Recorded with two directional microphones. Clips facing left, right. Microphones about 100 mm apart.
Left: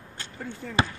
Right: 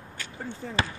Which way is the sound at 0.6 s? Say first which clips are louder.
Right 2 dB; 30° right (ahead or behind).